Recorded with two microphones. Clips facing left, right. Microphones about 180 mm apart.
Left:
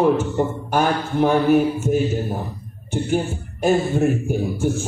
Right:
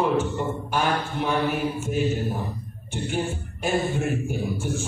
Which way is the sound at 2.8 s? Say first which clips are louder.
Left 6 dB; 40° left (ahead or behind).